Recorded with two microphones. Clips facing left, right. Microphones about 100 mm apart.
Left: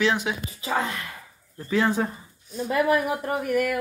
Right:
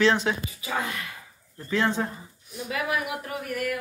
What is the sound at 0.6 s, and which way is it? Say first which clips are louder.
Speech: left 5 dB; 30° left (ahead or behind).